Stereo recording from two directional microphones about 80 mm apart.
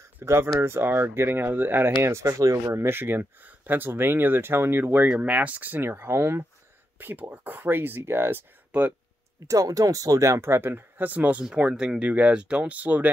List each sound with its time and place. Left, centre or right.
0.0 s speech: right
2.0 s speech: right
5.0 s speech: centre
8.7 s speech: centre
9.5 s speech: right; by 13.1 s centre